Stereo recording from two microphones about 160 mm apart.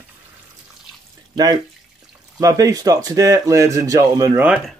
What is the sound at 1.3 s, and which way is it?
Speech, 25° right (ahead or behind).